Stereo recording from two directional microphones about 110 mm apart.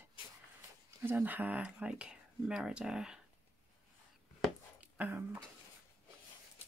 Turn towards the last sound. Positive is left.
turn(degrees=-15)  # may be behind; listen again after turning